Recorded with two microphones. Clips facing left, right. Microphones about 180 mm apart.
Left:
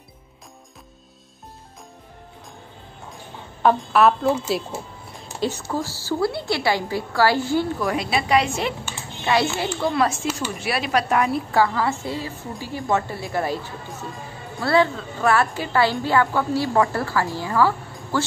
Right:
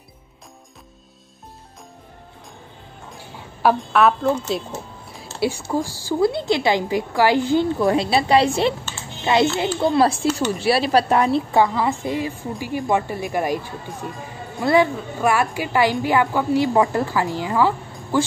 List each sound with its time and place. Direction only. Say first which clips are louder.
3.6 s a woman's voice: even; centre (ahead or behind)
5.4 s a woman's voice: right 3 dB; 10° right (ahead or behind)
14.6 s a woman's voice: right 2 dB; 15° right (ahead or behind)